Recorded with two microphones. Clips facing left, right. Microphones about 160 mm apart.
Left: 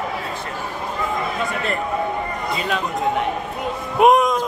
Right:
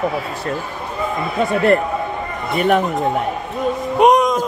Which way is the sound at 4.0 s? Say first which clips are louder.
Right 1 dB; centre (ahead or behind).